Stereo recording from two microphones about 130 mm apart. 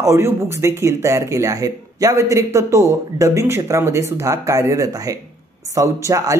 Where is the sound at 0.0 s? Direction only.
20° right (ahead or behind).